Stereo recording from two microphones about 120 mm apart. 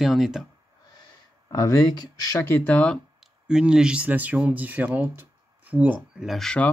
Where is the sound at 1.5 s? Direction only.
30° left (ahead or behind).